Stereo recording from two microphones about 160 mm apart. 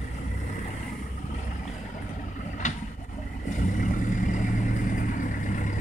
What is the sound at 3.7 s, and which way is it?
Vehicle, 55° left (ahead or behind).